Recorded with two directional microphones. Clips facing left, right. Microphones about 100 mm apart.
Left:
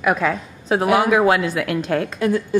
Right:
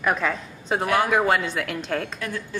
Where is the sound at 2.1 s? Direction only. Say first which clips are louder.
Left 12 dB; 15° left (ahead or behind).